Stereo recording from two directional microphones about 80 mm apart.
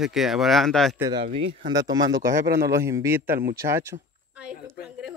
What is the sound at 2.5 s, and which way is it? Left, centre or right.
A man's voice, right.